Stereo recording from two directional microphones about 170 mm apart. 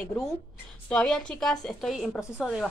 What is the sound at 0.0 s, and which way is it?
A woman's voice, 10° left (ahead or behind).